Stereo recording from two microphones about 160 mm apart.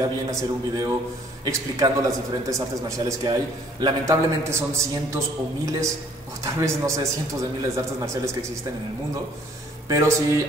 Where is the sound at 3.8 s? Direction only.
20° right (ahead or behind).